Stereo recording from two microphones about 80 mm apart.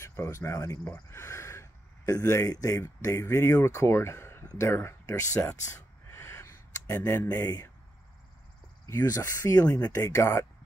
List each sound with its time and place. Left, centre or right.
0.0 s speech: left
6.0 s a sound: left
9.0 s speech: left